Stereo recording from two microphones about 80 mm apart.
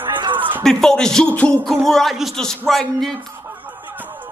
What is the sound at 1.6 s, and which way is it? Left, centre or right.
Speech, centre.